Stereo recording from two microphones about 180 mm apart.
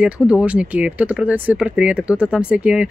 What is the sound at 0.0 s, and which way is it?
A woman's voice, 5° right (ahead or behind).